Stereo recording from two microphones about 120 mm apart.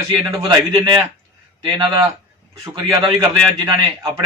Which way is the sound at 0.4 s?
40° right (ahead or behind).